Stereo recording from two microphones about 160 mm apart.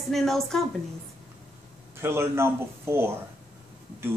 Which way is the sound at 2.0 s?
15° right (ahead or behind).